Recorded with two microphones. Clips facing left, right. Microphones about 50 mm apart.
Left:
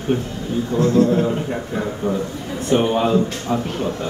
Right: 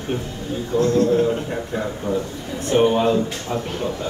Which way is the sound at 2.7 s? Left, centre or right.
Centre.